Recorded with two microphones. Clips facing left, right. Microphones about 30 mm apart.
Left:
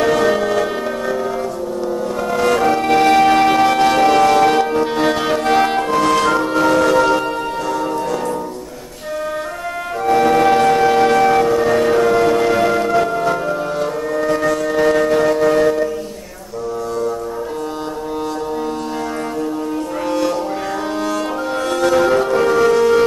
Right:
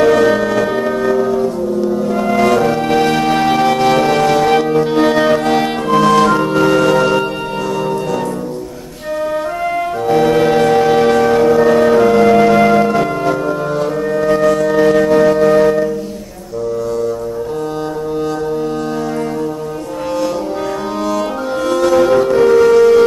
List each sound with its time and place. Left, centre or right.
0.0 s music: centre
10.0 s music: centre
11.4 s music: centre
21.6 s music: centre